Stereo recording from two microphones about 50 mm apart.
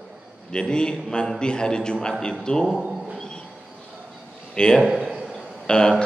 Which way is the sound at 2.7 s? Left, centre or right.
Centre.